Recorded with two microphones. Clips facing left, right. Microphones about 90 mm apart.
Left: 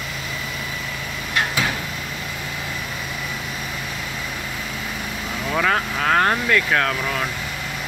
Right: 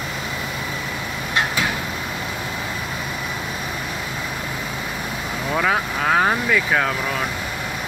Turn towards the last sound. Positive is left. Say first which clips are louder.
# even
turn(degrees=-5)  # may be behind; listen again after turning